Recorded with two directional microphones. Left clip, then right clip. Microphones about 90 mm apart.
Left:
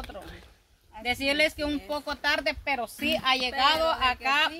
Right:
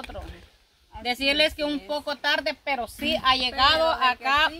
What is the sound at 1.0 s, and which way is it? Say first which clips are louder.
Speech: right 3 dB; 30° right (ahead or behind).